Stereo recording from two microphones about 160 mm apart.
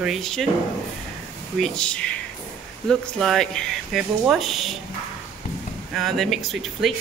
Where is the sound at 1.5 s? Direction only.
5° left (ahead or behind).